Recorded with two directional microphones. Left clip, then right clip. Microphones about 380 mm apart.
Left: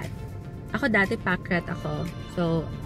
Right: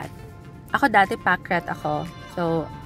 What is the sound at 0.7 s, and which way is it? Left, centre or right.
Speech, centre.